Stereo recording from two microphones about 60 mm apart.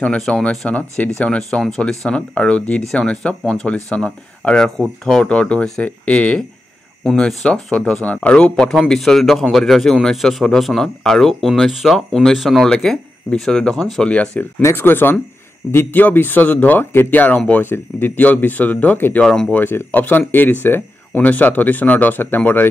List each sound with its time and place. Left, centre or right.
0.3 s speech: centre
7.1 s speech: centre
8.9 s speech: centre
12.1 s speech: centre
12.4 s speech: centre
12.7 s speech: centre
14.8 s speech: left
19.2 s speech: centre
19.5 s speech: left